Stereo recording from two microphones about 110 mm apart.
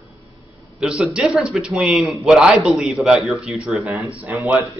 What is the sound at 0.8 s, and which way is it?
A man's voice, 10° right (ahead or behind).